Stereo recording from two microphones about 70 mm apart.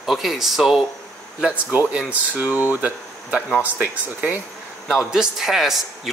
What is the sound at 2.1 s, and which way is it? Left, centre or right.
Speech, right.